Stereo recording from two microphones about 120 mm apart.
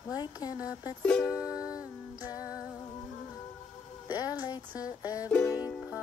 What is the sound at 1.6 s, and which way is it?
Music, 10° right (ahead or behind).